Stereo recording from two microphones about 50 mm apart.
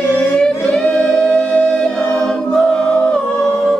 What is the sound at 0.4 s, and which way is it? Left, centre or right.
Singing, left.